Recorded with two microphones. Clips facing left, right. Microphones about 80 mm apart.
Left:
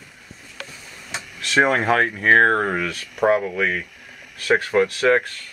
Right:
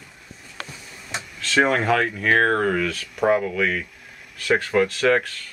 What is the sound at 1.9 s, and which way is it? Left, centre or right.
Speech, left.